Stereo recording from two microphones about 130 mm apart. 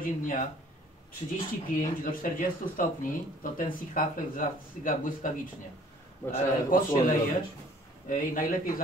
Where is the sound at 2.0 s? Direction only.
90° left.